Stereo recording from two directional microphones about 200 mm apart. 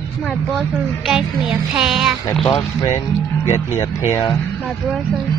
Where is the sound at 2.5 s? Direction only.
25° left (ahead or behind).